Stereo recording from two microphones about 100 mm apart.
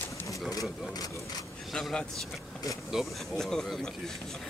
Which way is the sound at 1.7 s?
5° left (ahead or behind).